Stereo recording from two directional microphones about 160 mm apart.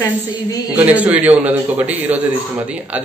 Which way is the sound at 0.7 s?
10° right (ahead or behind).